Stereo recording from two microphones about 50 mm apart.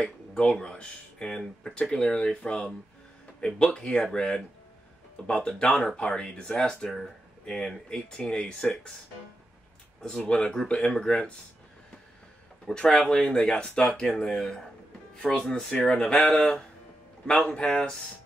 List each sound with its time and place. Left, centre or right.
0.4 s speech: centre
10.0 s speech: centre
12.6 s speech: centre
17.4 s speech: left